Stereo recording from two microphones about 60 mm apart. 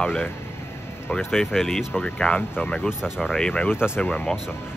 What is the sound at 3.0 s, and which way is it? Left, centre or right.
Speech, centre.